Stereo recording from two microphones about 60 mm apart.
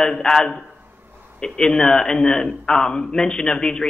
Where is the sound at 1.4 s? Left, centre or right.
Centre.